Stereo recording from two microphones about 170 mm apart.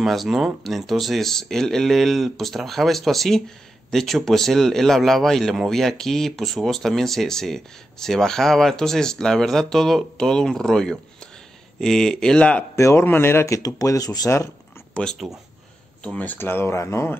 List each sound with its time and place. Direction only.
0.0 s speech: centre (ahead or behind); by 14.5 s 20° left (ahead or behind)
15.0 s speech: centre (ahead or behind)